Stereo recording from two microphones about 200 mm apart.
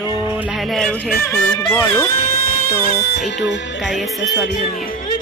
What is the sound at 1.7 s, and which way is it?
Speech, 10° left (ahead or behind).